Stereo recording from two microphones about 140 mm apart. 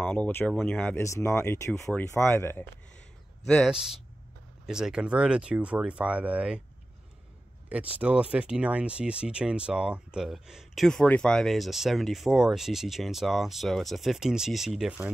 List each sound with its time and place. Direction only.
0.0 s speech: 10° left (ahead or behind)
1.0 s speech: 20° left (ahead or behind)
3.4 s speech: 5° left (ahead or behind)
7.7 s speech: 10° right (ahead or behind)